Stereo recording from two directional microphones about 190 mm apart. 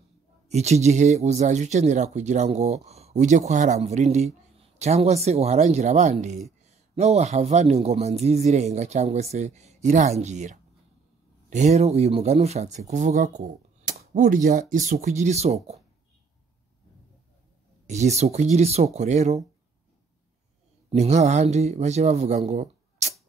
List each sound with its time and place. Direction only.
0.5 s speech: 35° right (ahead or behind)
17.8 s speech: 35° right (ahead or behind)
20.9 s speech: 35° right (ahead or behind)
22.5 s a sound: 40° right (ahead or behind)